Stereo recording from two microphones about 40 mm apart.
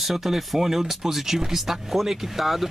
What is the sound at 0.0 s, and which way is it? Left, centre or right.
Speech, centre.